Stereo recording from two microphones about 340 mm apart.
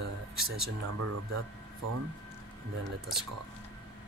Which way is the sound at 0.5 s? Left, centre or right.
Right.